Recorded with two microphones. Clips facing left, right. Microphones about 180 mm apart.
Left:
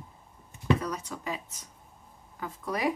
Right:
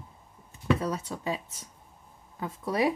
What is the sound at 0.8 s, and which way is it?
A woman's voice, 30° right (ahead or behind).